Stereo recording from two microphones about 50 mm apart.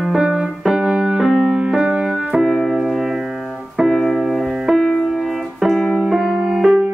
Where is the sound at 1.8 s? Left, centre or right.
Centre.